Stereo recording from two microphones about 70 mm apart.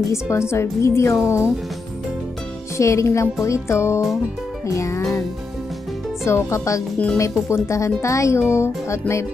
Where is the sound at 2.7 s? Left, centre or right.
Left.